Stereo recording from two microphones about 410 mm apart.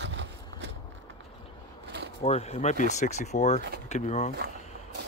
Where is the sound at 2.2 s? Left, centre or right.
Centre.